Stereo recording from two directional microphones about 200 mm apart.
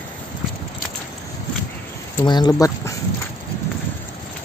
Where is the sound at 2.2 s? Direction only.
20° left (ahead or behind).